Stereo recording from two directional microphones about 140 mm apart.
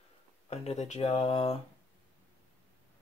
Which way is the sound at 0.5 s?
50° left (ahead or behind).